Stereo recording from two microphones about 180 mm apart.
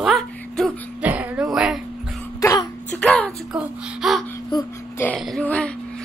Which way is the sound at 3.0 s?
5° left (ahead or behind).